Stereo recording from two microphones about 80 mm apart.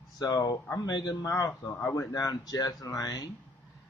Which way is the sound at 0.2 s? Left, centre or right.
Left.